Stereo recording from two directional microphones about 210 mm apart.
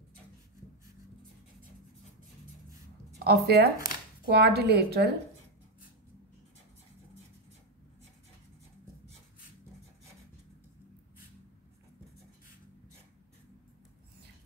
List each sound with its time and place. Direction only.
3.3 s speech: 50° right (ahead or behind)